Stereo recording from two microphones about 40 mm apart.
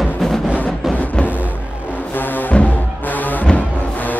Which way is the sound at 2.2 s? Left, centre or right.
Left.